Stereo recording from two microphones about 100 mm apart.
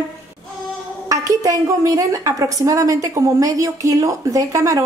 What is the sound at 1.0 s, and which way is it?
A woman's voice, 35° right (ahead or behind).